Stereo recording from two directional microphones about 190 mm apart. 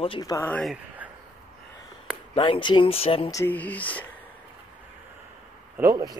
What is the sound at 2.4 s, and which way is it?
Speech, 25° left (ahead or behind).